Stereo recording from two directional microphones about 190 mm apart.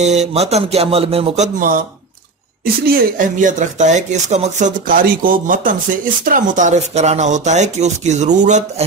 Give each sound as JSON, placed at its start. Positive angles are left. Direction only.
{"t": 0.0, "sound": "speech", "side_deg": -35}